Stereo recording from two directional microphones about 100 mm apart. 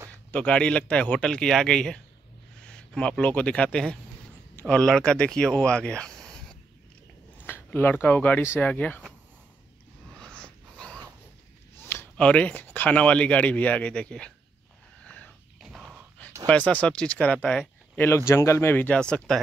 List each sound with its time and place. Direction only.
0.3 s speech: 10° left (ahead or behind)
7.4 s speech: 20° left (ahead or behind)
10.1 s dog: 10° left (ahead or behind)
11.7 s a sound: 25° left (ahead or behind)
12.2 s speech: 10° left (ahead or behind)
15.0 s a sound: 15° left (ahead or behind)
15.6 s a sound: 5° right (ahead or behind)
16.4 s speech: 15° left (ahead or behind)
18.0 s speech: 25° left (ahead or behind); by 19.4 s 5° left (ahead or behind)